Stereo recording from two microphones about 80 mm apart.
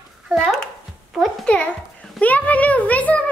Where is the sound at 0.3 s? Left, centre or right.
Centre.